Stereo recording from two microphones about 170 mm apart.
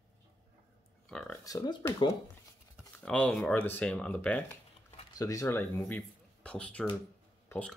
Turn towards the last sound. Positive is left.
turn(degrees=10)  # may be behind; listen again after turning